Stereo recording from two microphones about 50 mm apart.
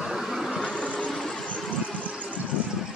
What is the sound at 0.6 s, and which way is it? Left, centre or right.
Vehicle, left.